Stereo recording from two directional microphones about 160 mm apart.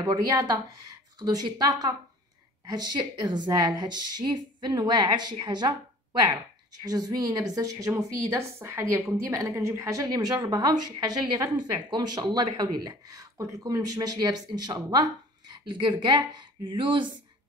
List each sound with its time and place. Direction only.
0.3 s speech: 20° right (ahead or behind)
6.8 s a woman's voice: 25° right (ahead or behind)